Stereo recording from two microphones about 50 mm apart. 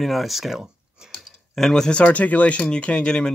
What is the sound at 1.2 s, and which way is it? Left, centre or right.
Speech, centre.